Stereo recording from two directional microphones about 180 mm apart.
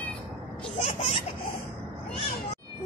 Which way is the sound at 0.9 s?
40° left (ahead or behind).